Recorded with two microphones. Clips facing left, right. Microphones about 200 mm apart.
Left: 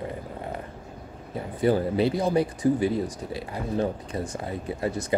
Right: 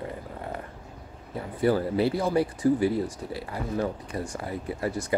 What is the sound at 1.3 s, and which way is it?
Speech, 20° left (ahead or behind).